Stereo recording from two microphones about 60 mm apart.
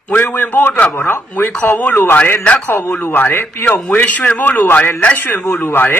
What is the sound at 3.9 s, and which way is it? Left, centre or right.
A man's voice, left.